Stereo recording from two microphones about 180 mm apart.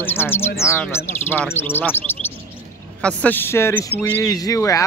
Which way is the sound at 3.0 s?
10° left (ahead or behind).